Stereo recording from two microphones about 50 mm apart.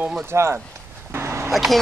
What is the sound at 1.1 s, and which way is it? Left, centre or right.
Vehicle, right.